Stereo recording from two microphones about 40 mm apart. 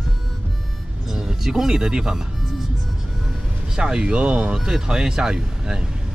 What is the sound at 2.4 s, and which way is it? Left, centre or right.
Music, centre.